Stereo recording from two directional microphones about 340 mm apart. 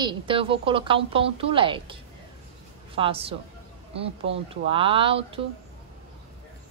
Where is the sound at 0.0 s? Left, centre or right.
Centre.